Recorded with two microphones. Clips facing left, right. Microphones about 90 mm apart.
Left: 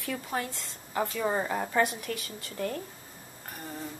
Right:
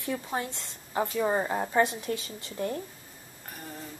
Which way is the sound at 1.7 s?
25° right (ahead or behind).